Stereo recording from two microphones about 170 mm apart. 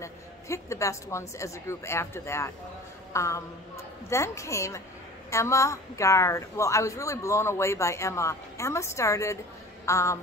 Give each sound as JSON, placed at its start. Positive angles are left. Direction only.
{"t": 0.0, "sound": "a woman's voice", "side_deg": 15}